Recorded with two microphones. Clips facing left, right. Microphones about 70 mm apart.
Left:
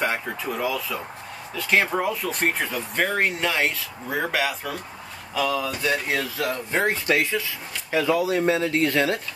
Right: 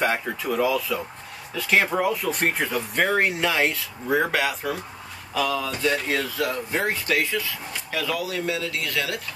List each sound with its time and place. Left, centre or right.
0.0 s speech: centre
5.7 s speech: centre; by 9.2 s left